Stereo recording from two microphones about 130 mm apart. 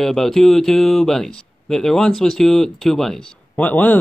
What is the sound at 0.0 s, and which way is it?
Speech, 5° left (ahead or behind).